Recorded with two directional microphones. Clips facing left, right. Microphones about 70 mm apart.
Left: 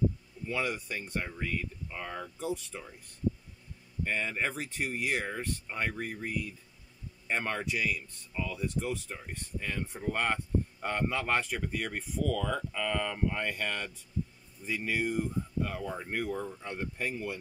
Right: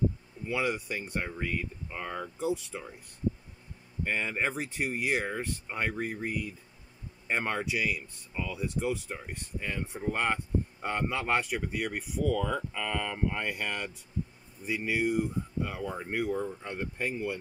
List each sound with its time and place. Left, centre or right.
0.5 s speech: right
4.0 s speech: right; by 16.5 s centre
16.6 s speech: right